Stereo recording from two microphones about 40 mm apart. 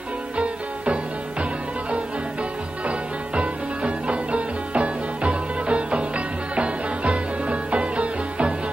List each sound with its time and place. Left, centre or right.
2.9 s music: right